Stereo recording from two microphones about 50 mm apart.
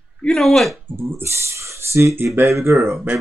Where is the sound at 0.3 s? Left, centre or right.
Centre.